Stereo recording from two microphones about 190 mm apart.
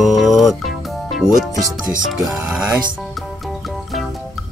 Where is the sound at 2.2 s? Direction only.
5° right (ahead or behind).